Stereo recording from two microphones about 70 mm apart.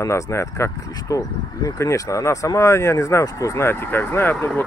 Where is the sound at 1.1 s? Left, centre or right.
Left.